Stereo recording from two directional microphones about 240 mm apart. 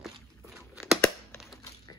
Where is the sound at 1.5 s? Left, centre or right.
Centre.